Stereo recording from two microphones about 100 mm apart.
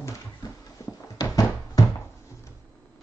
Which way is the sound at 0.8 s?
35° left (ahead or behind).